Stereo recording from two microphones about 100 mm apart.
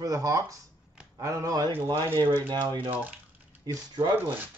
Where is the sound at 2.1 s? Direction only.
45° right (ahead or behind).